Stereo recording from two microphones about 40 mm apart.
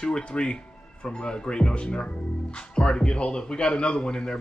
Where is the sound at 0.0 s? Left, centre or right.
Left.